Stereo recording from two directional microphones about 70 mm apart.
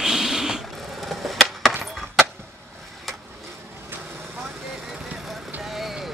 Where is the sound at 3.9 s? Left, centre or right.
Right.